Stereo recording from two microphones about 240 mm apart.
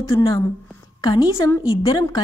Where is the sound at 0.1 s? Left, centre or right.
Centre.